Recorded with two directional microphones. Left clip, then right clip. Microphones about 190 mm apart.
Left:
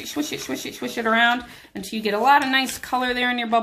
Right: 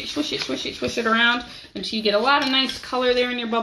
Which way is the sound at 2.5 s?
35° left (ahead or behind).